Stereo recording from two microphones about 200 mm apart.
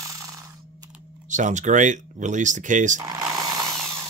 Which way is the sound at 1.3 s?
40° right (ahead or behind).